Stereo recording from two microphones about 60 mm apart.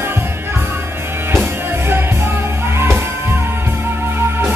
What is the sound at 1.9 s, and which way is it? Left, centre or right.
Music, right.